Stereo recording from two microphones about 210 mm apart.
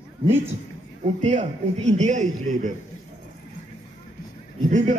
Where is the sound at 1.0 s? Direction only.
30° right (ahead or behind).